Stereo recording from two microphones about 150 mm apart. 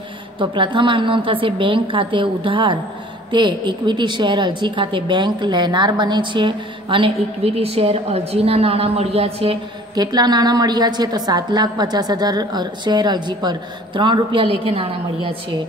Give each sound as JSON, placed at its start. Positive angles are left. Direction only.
{"t": 0.4, "sound": "a woman's voice", "side_deg": -35}
{"t": 9.9, "sound": "a woman's voice", "side_deg": -25}